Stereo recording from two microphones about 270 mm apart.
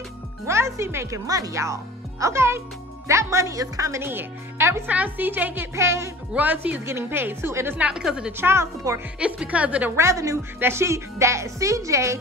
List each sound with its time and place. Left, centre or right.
0.5 s a woman's voice: centre